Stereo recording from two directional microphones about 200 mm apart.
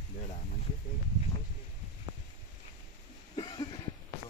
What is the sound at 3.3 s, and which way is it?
Cough, 25° left (ahead or behind).